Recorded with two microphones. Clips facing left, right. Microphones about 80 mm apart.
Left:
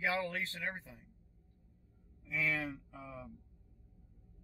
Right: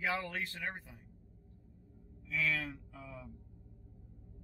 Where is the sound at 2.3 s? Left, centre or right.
Centre.